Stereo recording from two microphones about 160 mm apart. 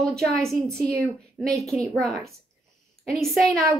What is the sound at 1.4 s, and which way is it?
Speech, 5° right (ahead or behind).